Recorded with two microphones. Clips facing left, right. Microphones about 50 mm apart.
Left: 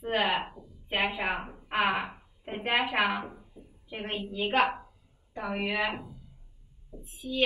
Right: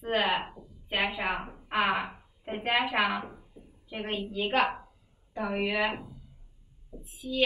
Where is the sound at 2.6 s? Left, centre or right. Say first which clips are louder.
Even; centre.